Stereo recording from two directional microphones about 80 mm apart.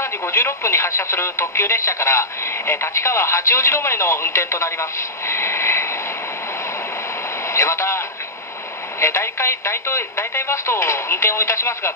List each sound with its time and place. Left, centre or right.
0.0 s speech: left
5.3 s vehicle: left
7.5 s speech: left
9.0 s speech: left